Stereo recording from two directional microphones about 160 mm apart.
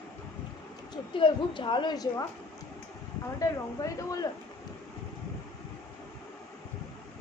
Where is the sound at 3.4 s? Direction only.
20° left (ahead or behind).